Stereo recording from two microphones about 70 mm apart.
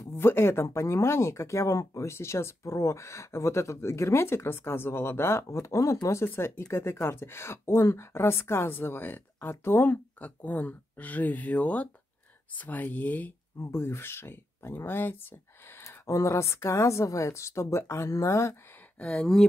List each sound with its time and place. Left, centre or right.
0.1 s speech: left
6.2 s speech: left
13.6 s speech: left
16.1 s speech: left
18.9 s speech: centre